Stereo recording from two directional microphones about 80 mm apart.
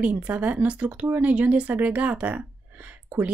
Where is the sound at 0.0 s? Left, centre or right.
Centre.